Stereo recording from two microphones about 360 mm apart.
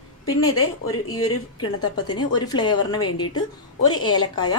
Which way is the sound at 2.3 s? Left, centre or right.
Centre.